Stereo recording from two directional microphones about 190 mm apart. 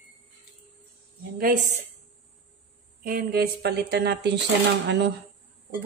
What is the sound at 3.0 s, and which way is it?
Speech, 50° right (ahead or behind).